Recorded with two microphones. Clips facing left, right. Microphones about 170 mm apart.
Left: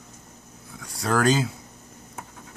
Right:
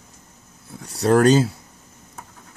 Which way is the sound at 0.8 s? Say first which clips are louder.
Right 7 dB; 35° right (ahead or behind).